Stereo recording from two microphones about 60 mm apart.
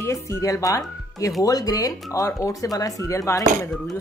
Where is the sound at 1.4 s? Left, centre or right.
Left.